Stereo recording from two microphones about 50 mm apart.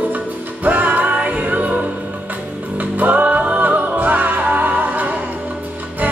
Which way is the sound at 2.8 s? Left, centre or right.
Right.